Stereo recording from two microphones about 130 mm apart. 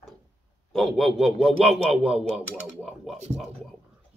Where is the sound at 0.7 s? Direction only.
Centre (ahead or behind).